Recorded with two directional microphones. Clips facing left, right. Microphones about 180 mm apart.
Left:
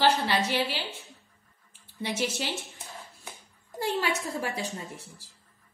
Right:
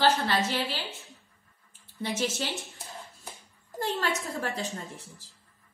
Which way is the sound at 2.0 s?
10° left (ahead or behind).